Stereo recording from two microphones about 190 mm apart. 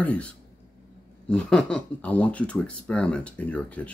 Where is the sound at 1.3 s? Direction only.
5° left (ahead or behind).